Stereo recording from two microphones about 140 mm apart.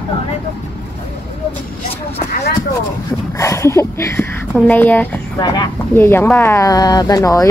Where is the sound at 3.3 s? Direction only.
20° left (ahead or behind).